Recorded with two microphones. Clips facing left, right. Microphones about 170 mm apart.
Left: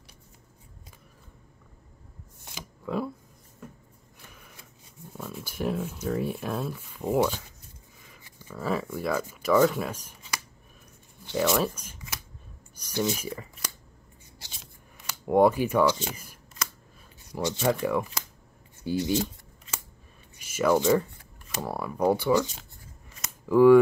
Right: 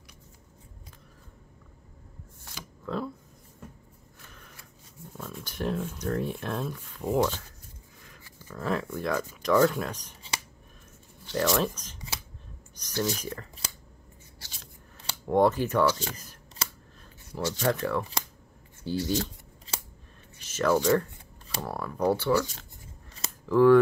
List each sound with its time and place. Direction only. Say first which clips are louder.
2.4 s shuffling cards: left 2 dB; 15° left (ahead or behind)
4.3 s a sound: right 1 dB; 10° left (ahead or behind)
5.1 s speech: left 2 dB; 5° left (ahead or behind)
8.2 s a sound: left 1 dB; 15° left (ahead or behind)
8.5 s speech: left 1 dB; 5° left (ahead or behind)
11.2 s speech: left 1 dB; 10° left (ahead or behind)
15.2 s speech: left 2 dB; 10° left (ahead or behind)
16.6 s shuffling cards: left 1 dB; 30° right (ahead or behind)
17.3 s speech: left 2 dB; 15° left (ahead or behind)
19.7 s scissors: right 1 dB; 30° right (ahead or behind)
20.3 s a sound: left 2 dB; 10° left (ahead or behind)
21.5 s speech: left 2 dB; 10° left (ahead or behind)